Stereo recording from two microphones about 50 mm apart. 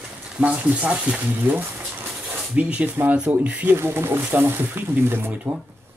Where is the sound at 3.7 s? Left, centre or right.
Right.